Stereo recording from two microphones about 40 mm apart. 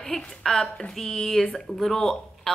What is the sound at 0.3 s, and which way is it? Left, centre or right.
A woman's voice, centre.